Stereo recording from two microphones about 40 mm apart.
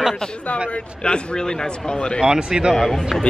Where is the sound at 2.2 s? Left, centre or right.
Centre.